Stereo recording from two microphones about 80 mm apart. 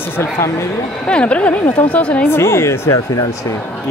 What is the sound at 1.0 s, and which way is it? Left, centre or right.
A man's voice, centre.